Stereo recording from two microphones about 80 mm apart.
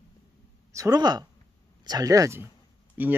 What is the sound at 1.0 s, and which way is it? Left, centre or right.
Speech, right.